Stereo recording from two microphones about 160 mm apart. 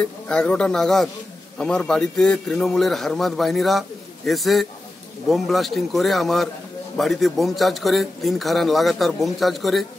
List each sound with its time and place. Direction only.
0.0 s a man's voice: 5° left (ahead or behind)